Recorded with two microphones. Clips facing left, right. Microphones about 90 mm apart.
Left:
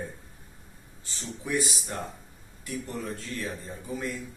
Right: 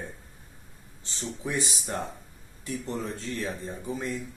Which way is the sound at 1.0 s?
25° right (ahead or behind).